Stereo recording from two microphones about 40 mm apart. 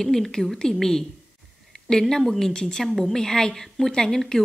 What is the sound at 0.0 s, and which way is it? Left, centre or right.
Speech, centre.